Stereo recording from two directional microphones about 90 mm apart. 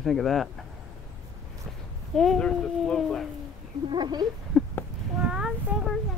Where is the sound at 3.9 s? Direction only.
55° right (ahead or behind).